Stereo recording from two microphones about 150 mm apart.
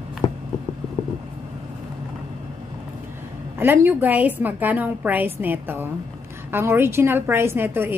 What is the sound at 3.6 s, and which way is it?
A woman's voice, 15° right (ahead or behind).